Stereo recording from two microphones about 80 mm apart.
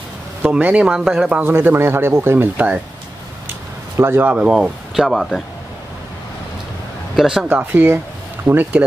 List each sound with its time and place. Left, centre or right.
0.4 s speech: centre
1.4 s speech: right
2.5 s speech: centre
4.0 s speech: right
4.4 s speech: centre
5.0 s speech: centre
7.2 s speech: centre
7.4 s speech: right